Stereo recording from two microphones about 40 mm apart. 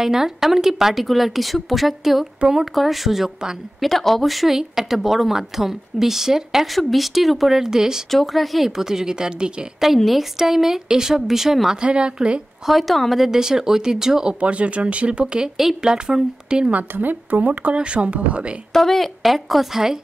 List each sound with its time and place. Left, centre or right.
0.0 s a woman's voice: centre
3.9 s a woman's voice: centre
8.1 s a woman's voice: centre
8.6 s a woman's voice: centre
10.0 s a woman's voice: centre
11.8 s a woman's voice: right
12.6 s a woman's voice: centre
13.2 s a woman's voice: centre
14.4 s a woman's voice: right
16.9 s speech: right
17.7 s speech: right
18.7 s a woman's voice: centre